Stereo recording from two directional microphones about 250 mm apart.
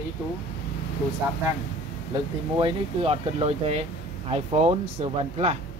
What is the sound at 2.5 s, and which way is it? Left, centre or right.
Speech, right.